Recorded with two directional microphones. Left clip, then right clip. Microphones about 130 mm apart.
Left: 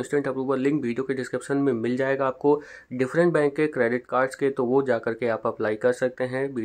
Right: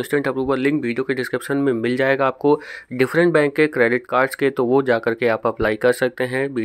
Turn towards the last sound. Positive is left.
turn(degrees=-30)  # may be behind; listen again after turning